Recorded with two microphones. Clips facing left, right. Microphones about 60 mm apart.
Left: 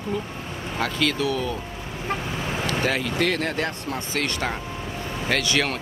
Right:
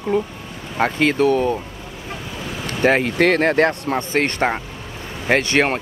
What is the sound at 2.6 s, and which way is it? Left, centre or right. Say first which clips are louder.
Speech: right 9 dB; right.